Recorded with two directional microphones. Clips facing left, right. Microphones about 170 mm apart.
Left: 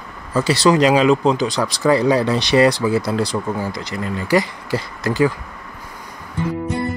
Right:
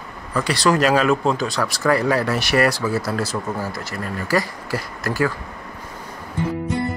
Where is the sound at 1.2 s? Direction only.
Centre (ahead or behind).